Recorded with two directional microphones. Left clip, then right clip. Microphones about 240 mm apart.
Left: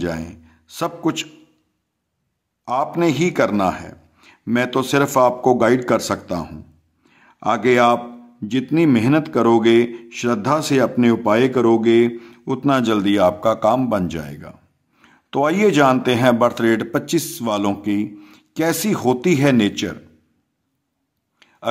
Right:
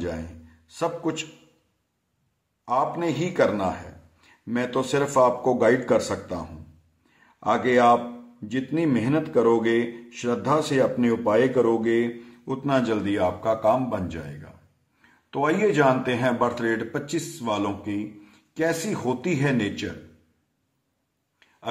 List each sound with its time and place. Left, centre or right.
0.0 s a man's voice: left
2.6 s speech: left
7.1 s a sound: left
8.5 s speech: left